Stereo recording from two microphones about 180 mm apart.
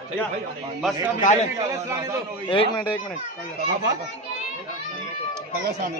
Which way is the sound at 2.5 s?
30° left (ahead or behind).